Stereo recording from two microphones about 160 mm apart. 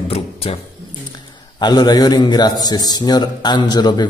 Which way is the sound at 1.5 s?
25° left (ahead or behind).